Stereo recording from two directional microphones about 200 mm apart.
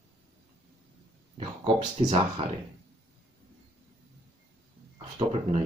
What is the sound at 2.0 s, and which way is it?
Speech, 30° right (ahead or behind).